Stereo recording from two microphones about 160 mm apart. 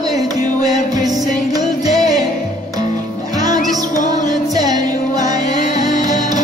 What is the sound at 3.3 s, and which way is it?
Music, 25° right (ahead or behind).